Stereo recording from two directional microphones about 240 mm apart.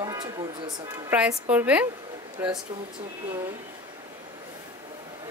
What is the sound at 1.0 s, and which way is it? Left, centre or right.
A woman's voice, centre.